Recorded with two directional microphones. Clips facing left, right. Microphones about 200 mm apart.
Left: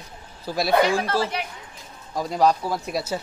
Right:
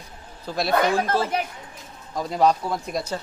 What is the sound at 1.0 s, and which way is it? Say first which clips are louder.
Speech: right 2 dB; 45° right (ahead or behind).